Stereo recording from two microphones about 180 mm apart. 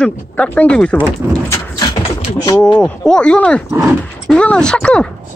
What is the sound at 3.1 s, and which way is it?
Speech, 5° left (ahead or behind).